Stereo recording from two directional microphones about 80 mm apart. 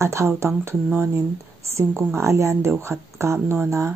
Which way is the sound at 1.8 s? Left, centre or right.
Right.